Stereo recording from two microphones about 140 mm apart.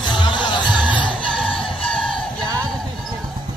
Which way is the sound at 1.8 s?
10° left (ahead or behind).